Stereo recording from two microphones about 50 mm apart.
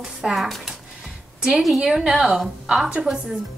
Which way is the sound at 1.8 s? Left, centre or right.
Centre.